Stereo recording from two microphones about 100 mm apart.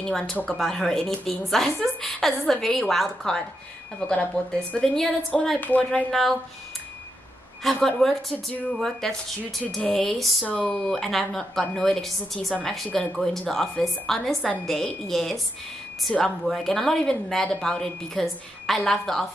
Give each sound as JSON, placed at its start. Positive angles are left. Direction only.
{"t": 0.0, "sound": "a woman's voice", "side_deg": 5}
{"t": 5.6, "sound": "speech", "side_deg": 20}
{"t": 7.6, "sound": "a woman's voice", "side_deg": 5}